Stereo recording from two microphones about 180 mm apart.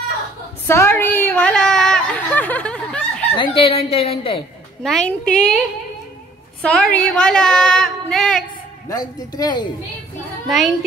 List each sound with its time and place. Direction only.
0.7 s a sound: 15° left (ahead or behind)
3.3 s a woman's voice: 30° left (ahead or behind)
4.8 s a woman's voice: 5° left (ahead or behind)
6.6 s a woman's voice: 5° left (ahead or behind)
8.8 s speech: 20° left (ahead or behind)
10.5 s a woman's voice: centre (ahead or behind)